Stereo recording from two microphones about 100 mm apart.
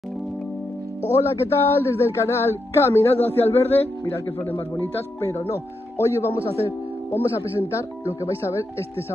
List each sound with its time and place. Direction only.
1.0 s speech: 25° left (ahead or behind)